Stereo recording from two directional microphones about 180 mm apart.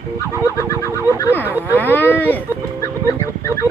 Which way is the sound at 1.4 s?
10° right (ahead or behind).